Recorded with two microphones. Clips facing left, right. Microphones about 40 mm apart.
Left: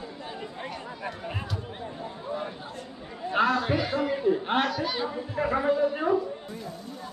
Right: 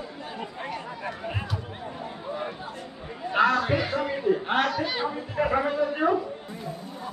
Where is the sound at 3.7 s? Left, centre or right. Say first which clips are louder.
Even; centre.